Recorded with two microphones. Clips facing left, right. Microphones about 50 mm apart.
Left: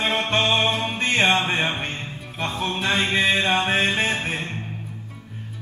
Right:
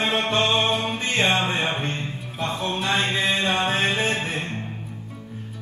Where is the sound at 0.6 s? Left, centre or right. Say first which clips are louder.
Left 1 dB; centre.